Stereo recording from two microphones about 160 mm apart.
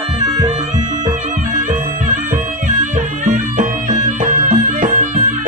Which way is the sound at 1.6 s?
55° right (ahead or behind).